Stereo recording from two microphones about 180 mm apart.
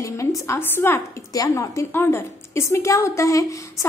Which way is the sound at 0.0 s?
15° left (ahead or behind).